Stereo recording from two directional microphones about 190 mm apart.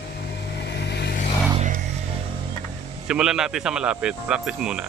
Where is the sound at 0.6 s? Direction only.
60° left (ahead or behind).